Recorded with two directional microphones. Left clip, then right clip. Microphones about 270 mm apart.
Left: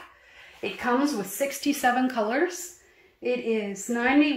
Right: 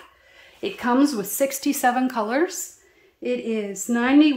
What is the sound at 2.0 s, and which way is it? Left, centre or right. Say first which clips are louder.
A woman's voice: right 2 dB; centre.